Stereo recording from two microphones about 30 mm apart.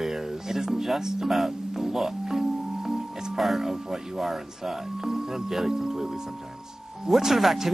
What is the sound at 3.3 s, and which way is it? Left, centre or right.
Speech, centre.